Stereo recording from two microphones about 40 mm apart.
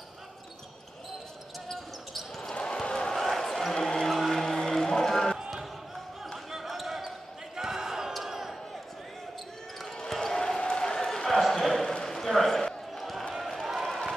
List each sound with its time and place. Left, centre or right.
1.7 s basketball bounce: centre
2.6 s basketball bounce: centre
3.2 s a sound: centre
4.1 s music: centre
6.3 s basketball bounce: centre
8.1 s crowd: centre
9.9 s basketball bounce: centre
10.6 s applause: centre
11.2 s a sound: centre
11.8 s a sound: centre